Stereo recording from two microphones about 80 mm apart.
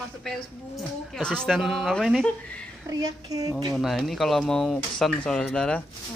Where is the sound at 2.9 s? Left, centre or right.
Right.